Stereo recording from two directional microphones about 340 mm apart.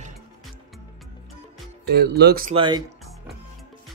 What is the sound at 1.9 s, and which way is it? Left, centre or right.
Speech, right.